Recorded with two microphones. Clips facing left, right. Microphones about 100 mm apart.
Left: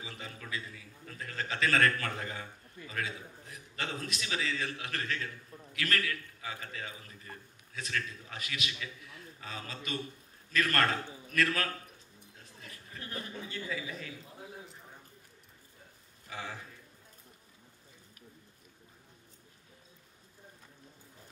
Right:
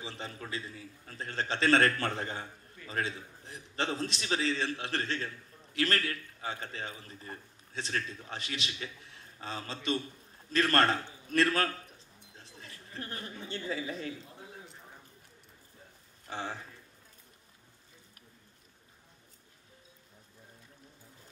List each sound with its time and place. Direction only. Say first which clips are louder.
0.0 s a man's voice: right 3 dB; 30° right (ahead or behind)
14.2 s a sound: left 1 dB; 5° left (ahead or behind)
16.3 s speech: right 4 dB; 30° right (ahead or behind)